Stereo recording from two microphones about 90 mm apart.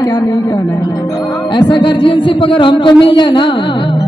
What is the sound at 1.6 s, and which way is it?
A man's voice, 60° left (ahead or behind).